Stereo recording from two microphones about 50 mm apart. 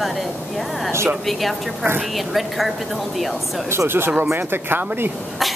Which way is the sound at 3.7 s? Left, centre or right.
Right.